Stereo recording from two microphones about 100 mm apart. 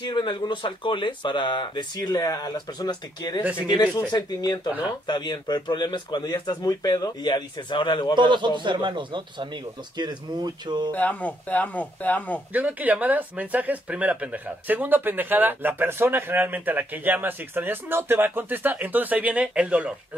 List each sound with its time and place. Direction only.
0.0 s speech: 50° left (ahead or behind)
8.2 s a man's voice: 50° right (ahead or behind)
11.0 s speech: 15° left (ahead or behind)
12.5 s speech: 15° right (ahead or behind)